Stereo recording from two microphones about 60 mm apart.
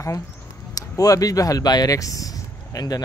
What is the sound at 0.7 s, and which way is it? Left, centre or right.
Speech, left.